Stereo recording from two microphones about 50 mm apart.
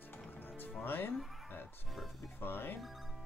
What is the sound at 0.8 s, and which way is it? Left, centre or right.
Music, left.